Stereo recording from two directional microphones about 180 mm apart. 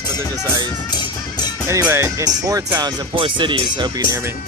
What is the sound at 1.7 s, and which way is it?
Speech, 10° right (ahead or behind).